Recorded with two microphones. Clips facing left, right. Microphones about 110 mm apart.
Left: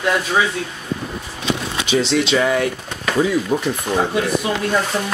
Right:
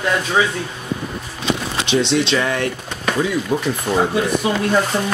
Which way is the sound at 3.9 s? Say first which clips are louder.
Right 2 dB; 20° right (ahead or behind).